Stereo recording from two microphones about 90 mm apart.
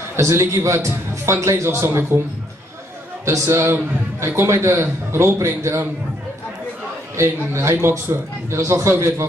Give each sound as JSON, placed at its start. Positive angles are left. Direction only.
{"t": 0.1, "sound": "a man's voice", "side_deg": -30}
{"t": 3.3, "sound": "a man's voice", "side_deg": -30}
{"t": 7.2, "sound": "a man's voice", "side_deg": -30}